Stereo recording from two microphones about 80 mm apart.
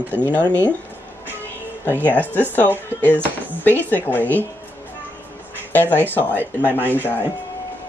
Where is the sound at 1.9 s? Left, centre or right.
Left.